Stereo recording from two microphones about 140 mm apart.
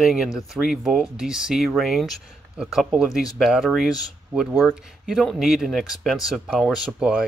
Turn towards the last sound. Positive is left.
turn(degrees=-5)  # may be behind; listen again after turning